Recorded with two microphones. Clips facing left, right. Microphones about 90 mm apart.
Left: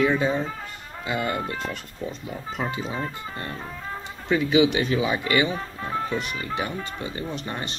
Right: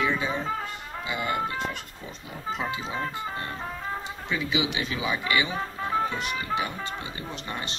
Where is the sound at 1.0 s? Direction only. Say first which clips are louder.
Left 4 dB; 40° left (ahead or behind).